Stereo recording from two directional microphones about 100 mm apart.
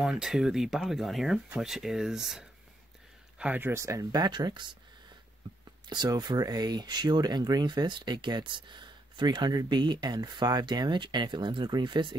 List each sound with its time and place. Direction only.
0.0 s speech: 5° right (ahead or behind)
3.3 s speech: 15° right (ahead or behind); by 4.7 s 50° right (ahead or behind)
5.9 s speech: 45° right (ahead or behind)